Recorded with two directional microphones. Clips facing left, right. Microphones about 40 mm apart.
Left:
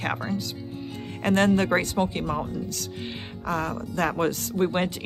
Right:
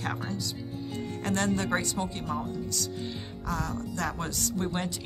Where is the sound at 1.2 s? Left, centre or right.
Left.